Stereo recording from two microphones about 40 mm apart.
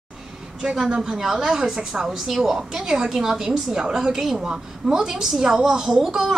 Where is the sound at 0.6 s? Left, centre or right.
Centre.